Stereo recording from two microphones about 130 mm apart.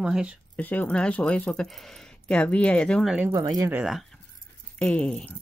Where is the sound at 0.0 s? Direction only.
5° right (ahead or behind).